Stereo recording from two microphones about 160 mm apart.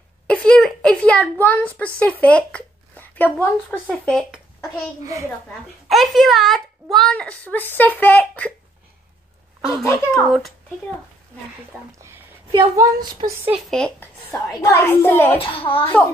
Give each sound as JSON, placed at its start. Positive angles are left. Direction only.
{"t": 0.3, "sound": "a sound", "side_deg": 5}
{"t": 2.0, "sound": "a woman's voice", "side_deg": 10}
{"t": 5.9, "sound": "a woman's voice", "side_deg": 0}
{"t": 10.1, "sound": "a woman's voice", "side_deg": 0}
{"t": 11.7, "sound": "a woman's voice", "side_deg": 5}
{"t": 12.4, "sound": "a woman's voice", "side_deg": -20}
{"t": 13.5, "sound": "a woman's voice", "side_deg": 5}
{"t": 15.3, "sound": "a child's voice", "side_deg": 35}